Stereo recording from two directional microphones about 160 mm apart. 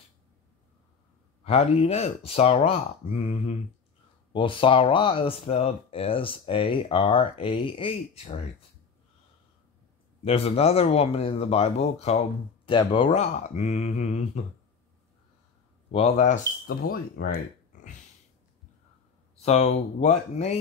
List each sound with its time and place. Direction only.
1.4 s speech: 40° left (ahead or behind)
10.2 s speech: 40° left (ahead or behind)
13.2 s speech: 45° left (ahead or behind)
15.9 s speech: 40° left (ahead or behind)
16.6 s speech: 65° left (ahead or behind)
19.4 s speech: 40° left (ahead or behind)